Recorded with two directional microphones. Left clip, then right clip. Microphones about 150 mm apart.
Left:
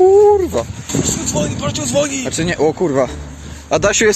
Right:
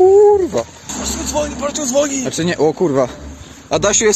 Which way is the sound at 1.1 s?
40° right (ahead or behind).